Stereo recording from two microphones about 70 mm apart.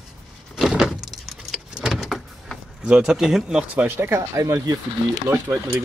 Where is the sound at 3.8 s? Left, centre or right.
Right.